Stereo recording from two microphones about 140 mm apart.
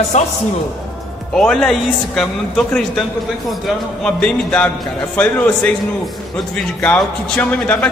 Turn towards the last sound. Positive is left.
turn(degrees=10)  # may be behind; listen again after turning